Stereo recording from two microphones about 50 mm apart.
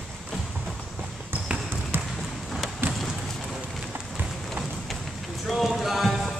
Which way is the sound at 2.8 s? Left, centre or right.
Right.